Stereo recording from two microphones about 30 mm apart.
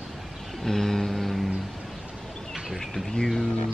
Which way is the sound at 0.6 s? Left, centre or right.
Centre.